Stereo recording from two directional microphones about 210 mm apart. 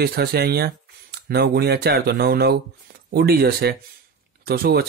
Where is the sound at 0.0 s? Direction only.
50° right (ahead or behind).